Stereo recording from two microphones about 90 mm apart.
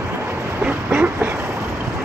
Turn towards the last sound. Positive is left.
turn(degrees=-20)  # may be behind; listen again after turning